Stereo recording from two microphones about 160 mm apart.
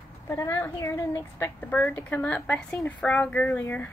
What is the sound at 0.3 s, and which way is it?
A woman's voice, 15° left (ahead or behind).